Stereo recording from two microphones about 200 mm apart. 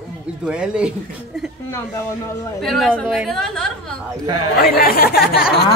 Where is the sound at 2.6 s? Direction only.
Centre (ahead or behind).